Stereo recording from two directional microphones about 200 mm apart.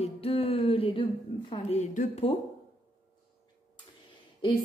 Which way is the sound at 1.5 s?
35° left (ahead or behind).